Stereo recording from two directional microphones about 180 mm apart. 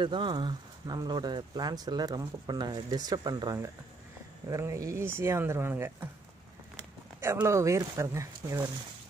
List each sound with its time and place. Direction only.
0.0 s speech: 25° right (ahead or behind)
7.2 s speech: 15° right (ahead or behind)